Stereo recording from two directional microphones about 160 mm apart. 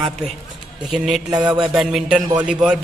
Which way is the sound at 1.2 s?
25° right (ahead or behind).